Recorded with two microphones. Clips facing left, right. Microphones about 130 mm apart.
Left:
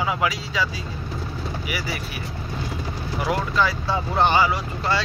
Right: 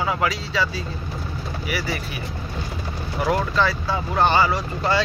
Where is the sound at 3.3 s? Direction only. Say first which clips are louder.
Right 1 dB; 10° left (ahead or behind).